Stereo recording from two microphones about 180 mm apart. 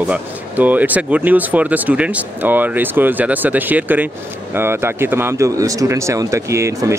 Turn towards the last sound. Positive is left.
turn(degrees=-15)  # may be behind; listen again after turning